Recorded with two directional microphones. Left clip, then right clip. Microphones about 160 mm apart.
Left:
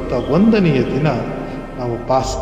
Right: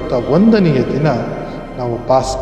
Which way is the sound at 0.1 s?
25° right (ahead or behind).